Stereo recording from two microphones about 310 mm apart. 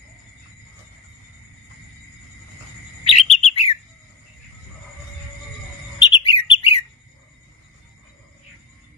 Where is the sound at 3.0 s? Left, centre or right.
Left.